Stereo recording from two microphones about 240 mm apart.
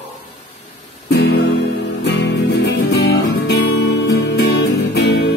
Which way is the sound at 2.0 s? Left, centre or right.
Left.